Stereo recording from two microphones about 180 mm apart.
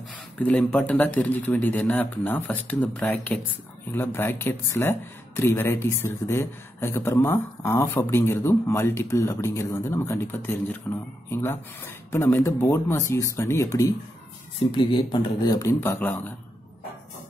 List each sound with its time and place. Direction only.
0.4 s speech: 5° left (ahead or behind)
14.7 s speech: 30° left (ahead or behind); by 16.3 s 10° left (ahead or behind)